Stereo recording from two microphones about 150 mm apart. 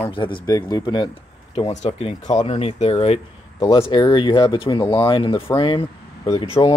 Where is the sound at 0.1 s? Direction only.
35° left (ahead or behind).